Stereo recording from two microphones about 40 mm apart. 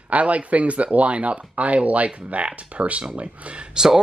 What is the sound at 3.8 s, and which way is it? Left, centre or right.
Speech, centre.